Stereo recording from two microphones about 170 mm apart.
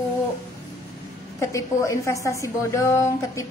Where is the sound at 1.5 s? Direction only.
15° left (ahead or behind).